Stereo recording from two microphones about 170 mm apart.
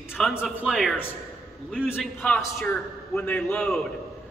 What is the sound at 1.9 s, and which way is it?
A man's voice, 15° left (ahead or behind).